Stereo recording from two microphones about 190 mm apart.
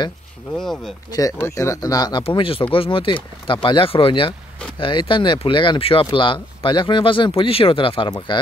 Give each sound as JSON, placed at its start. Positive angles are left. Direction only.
{"t": 0.6, "sound": "speech", "side_deg": 0}
{"t": 1.1, "sound": "speech", "side_deg": 15}